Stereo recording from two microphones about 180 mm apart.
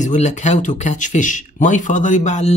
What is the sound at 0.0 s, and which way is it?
Speech, 40° left (ahead or behind).